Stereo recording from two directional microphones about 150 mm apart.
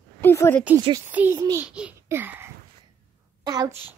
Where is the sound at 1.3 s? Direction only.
25° right (ahead or behind).